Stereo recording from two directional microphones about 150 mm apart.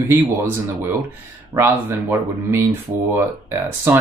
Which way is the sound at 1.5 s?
15° right (ahead or behind).